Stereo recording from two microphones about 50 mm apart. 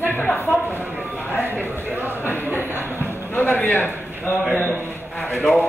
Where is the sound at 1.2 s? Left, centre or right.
Left.